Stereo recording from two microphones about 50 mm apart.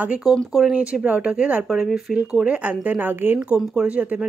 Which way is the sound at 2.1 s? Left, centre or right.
Right.